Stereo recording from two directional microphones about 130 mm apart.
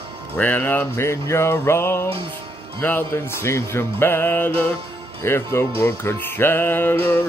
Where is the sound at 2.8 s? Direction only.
15° left (ahead or behind).